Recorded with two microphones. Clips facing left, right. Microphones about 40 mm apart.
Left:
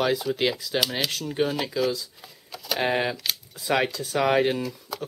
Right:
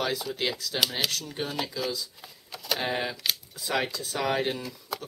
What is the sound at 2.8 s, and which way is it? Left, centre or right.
Speech, left.